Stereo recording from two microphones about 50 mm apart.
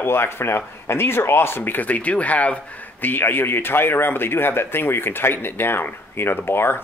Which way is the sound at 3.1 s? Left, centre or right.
Left.